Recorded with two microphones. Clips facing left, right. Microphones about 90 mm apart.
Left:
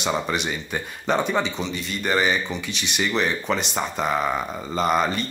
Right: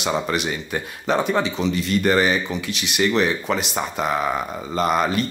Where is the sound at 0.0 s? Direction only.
Centre (ahead or behind).